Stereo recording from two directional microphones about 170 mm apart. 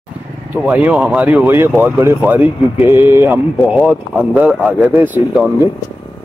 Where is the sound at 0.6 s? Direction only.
10° right (ahead or behind).